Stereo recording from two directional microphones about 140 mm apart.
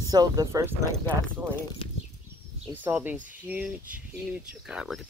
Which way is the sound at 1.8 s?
40° left (ahead or behind).